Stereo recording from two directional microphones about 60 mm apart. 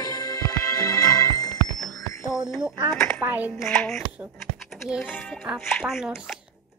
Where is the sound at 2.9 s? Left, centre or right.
Centre.